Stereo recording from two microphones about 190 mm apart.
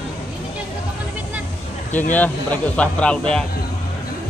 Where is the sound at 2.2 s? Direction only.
10° left (ahead or behind).